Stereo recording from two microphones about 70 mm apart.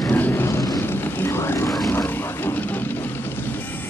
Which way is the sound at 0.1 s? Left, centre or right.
Left.